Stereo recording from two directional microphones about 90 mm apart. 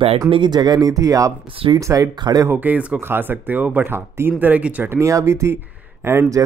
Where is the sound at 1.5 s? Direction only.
90° right.